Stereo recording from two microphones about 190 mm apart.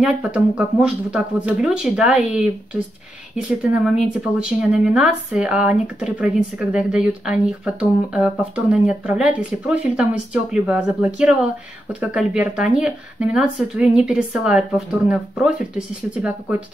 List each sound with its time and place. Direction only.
0.0 s speech: 5° right (ahead or behind)